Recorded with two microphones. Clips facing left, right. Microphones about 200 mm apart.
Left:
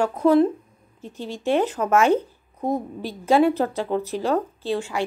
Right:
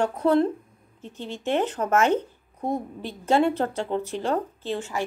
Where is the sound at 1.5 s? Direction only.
10° left (ahead or behind).